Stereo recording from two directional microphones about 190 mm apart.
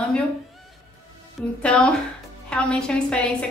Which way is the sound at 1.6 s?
5° left (ahead or behind).